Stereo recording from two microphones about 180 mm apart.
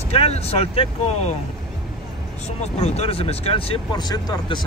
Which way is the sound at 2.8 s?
35° left (ahead or behind).